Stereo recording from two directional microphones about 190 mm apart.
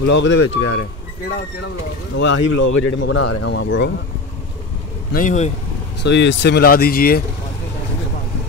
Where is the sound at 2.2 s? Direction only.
75° left (ahead or behind).